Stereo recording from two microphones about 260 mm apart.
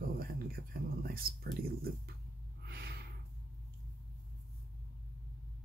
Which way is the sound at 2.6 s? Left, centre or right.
Right.